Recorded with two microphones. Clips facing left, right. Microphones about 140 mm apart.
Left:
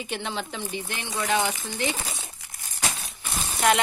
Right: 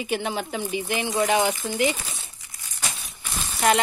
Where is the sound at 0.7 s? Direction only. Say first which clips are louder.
Right 9 dB; 10° right (ahead or behind).